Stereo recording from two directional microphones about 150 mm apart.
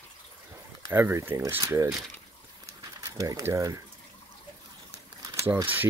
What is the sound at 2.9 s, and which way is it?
Speech, 20° right (ahead or behind).